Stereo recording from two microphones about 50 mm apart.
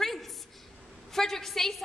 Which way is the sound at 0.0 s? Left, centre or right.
Centre.